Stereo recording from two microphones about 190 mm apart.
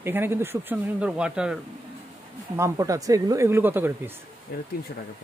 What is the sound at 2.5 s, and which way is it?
Speech, 15° right (ahead or behind).